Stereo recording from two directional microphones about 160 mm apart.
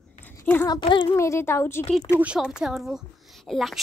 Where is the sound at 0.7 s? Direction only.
30° left (ahead or behind).